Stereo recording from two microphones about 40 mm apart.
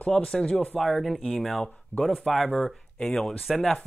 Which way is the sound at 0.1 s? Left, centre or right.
Centre.